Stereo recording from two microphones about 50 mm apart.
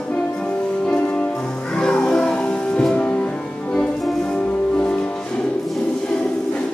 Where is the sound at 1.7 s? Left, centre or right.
Centre.